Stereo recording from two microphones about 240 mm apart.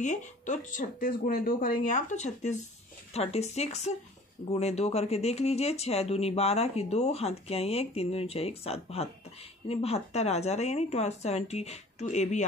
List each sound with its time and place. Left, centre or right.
0.0 s speech: left